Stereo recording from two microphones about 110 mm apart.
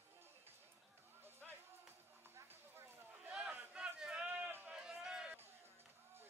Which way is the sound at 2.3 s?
20° right (ahead or behind).